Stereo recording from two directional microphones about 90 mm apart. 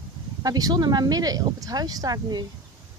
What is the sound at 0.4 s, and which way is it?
Speech, 45° right (ahead or behind).